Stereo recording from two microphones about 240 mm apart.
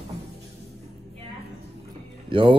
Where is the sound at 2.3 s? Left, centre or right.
Right.